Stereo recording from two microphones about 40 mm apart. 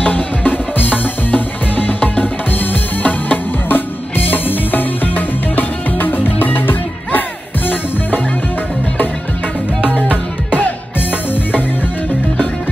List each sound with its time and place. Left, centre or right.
0.0 s music: left
9.8 s music: right